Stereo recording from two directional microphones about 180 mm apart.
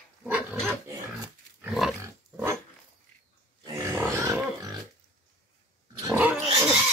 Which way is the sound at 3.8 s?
15° right (ahead or behind).